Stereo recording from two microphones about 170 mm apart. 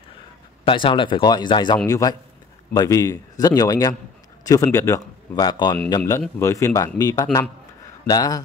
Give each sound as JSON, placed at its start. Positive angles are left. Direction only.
{"t": 0.7, "sound": "a man's voice", "side_deg": 30}